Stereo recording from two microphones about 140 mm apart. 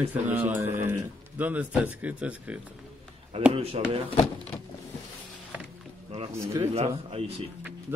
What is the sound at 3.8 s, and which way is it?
Speech, 45° right (ahead or behind).